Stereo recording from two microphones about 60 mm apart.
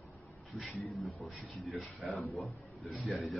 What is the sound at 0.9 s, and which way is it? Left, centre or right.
A man's voice, centre.